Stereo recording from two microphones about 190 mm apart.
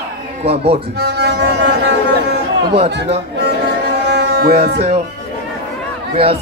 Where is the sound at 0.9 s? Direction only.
60° right (ahead or behind).